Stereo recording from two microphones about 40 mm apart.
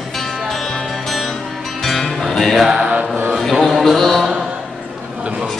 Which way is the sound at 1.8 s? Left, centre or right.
Centre.